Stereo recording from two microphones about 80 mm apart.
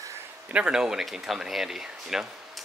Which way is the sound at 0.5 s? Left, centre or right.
Centre.